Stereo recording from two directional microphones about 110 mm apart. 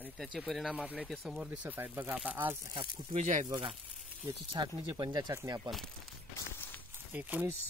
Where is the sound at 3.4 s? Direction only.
50° right (ahead or behind).